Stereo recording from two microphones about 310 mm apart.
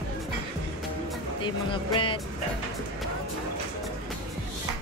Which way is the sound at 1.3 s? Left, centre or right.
Centre.